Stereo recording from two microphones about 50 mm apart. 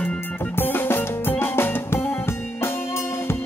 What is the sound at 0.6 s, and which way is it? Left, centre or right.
Music, left.